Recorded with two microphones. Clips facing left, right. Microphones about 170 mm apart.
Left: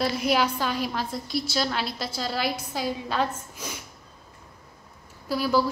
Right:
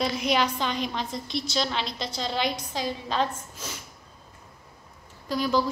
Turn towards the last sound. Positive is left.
turn(degrees=10)  # may be behind; listen again after turning